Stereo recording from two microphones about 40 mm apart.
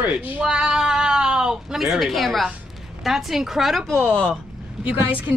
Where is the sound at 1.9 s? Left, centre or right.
Centre.